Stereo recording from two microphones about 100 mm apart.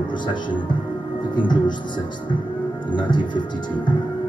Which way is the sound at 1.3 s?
50° left (ahead or behind).